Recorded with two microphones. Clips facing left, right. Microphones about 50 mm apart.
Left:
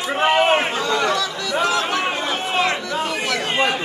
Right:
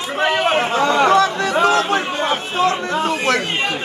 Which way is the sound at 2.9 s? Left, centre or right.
Right.